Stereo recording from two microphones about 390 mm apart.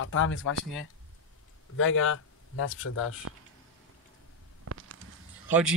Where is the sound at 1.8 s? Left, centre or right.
Left.